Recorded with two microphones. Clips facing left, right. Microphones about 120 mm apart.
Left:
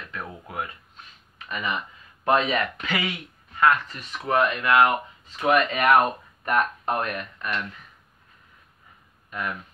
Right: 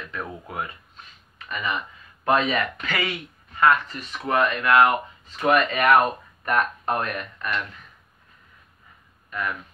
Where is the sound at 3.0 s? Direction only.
Centre (ahead or behind).